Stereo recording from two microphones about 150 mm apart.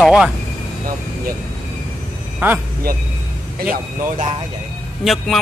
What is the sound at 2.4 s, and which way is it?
Speech, 15° right (ahead or behind).